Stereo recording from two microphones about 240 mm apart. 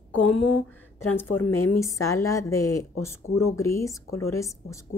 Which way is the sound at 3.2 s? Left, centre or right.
Left.